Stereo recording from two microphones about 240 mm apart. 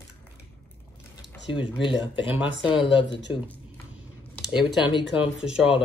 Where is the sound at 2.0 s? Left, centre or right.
Centre.